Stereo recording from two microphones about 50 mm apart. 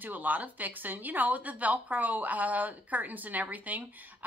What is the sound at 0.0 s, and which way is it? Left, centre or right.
Speech, right.